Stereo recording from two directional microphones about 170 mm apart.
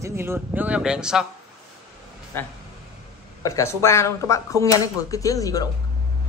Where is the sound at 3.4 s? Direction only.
15° left (ahead or behind).